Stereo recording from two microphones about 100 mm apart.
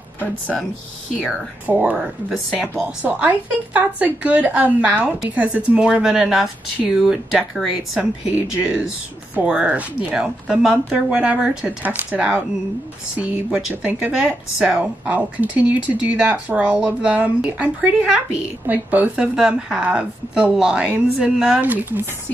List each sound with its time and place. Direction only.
0.2 s speech: 15° left (ahead or behind)
1.7 s speech: 15° right (ahead or behind)
8.0 s speech: 15° right (ahead or behind)